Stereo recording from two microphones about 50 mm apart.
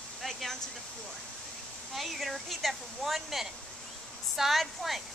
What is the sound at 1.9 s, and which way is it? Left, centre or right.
Speech, centre.